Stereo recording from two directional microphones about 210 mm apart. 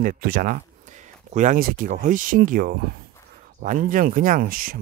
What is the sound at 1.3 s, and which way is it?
Speech, 35° right (ahead or behind).